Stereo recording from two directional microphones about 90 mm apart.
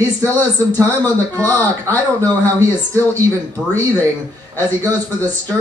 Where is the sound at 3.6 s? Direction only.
10° right (ahead or behind).